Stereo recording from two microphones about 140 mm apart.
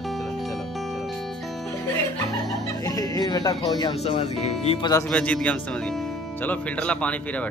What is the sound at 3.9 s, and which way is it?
Speech, 50° left (ahead or behind).